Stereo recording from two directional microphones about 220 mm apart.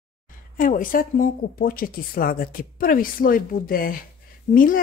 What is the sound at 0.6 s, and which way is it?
Speech, 40° left (ahead or behind).